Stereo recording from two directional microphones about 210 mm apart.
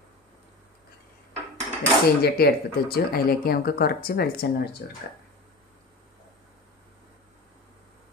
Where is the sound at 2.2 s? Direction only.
45° left (ahead or behind).